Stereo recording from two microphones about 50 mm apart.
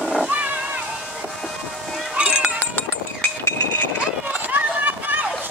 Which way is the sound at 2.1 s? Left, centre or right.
Right.